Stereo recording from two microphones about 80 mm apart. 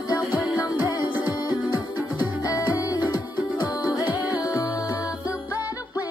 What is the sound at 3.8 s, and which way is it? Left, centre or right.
Music, left.